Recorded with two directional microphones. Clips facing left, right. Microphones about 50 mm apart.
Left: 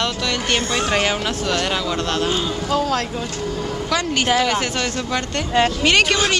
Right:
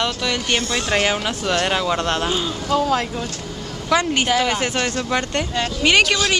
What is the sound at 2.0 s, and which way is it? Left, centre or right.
Speech, right.